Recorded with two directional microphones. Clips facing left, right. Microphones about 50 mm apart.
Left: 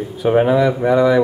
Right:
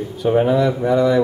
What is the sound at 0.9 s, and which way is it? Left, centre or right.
Speech, centre.